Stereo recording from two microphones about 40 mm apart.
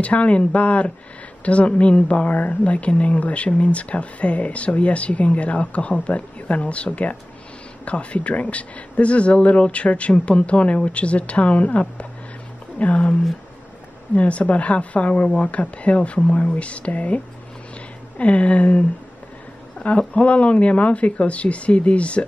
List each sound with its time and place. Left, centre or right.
0.0 s a woman's voice: left
14.1 s a woman's voice: left